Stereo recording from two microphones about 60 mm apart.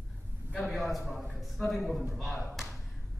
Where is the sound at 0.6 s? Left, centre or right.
Centre.